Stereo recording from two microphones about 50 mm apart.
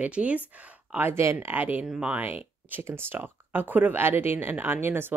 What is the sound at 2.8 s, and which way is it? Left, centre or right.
Speech, right.